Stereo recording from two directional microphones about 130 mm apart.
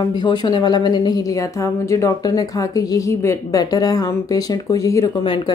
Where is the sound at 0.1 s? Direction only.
35° left (ahead or behind).